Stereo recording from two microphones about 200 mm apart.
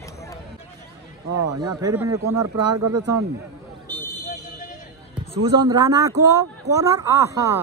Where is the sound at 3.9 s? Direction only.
10° left (ahead or behind).